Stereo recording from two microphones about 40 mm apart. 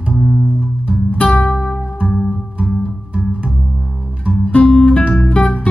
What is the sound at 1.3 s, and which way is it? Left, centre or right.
Music, left.